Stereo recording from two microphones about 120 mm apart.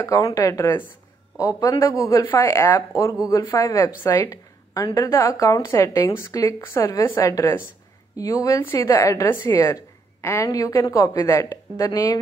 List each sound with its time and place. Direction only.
0.0 s a woman's voice: 30° left (ahead or behind)